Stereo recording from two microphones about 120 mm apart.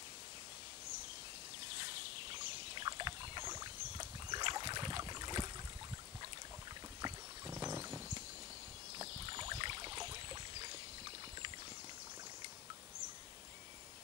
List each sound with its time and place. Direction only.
2.7 s rowboat: 40° right (ahead or behind)
3.4 s rowboat: 25° right (ahead or behind)
4.3 s boat: 40° right (ahead or behind)
7.0 s boat: 30° right (ahead or behind)
8.9 s rowboat: 35° right (ahead or behind)